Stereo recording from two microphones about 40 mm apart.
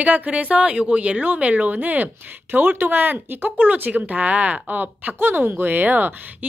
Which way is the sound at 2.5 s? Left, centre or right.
Right.